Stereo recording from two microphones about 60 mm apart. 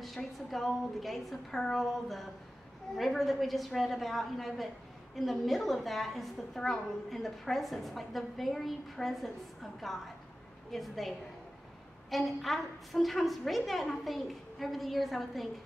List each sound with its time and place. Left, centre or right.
0.0 s a woman's voice: centre